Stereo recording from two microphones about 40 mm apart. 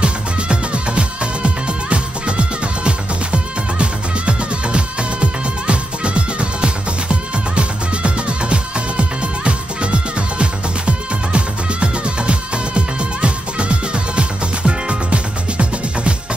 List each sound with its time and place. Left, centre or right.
0.0 s music: right